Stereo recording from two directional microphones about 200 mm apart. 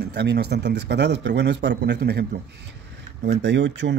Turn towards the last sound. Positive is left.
turn(degrees=-65)  # may be behind; listen again after turning